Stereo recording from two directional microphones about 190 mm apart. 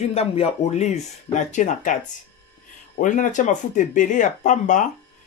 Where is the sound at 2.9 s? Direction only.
40° left (ahead or behind).